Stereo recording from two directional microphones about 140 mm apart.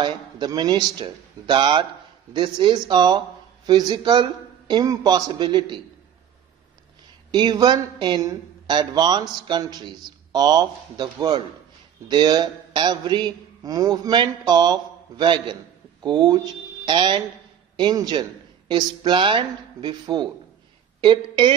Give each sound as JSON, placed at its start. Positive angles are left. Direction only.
{"t": 0.0, "sound": "a man's voice", "side_deg": -30}
{"t": 7.2, "sound": "a man's voice", "side_deg": -30}